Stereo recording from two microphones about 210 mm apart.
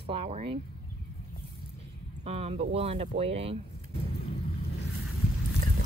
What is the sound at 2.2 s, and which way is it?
A woman's voice, 30° right (ahead or behind).